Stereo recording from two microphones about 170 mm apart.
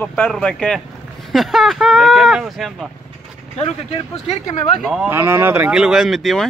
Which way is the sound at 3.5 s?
35° left (ahead or behind).